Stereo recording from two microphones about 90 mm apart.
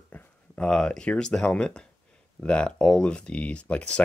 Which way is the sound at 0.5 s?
10° left (ahead or behind).